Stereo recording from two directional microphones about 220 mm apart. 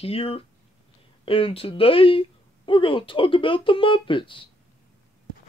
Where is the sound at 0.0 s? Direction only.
25° left (ahead or behind).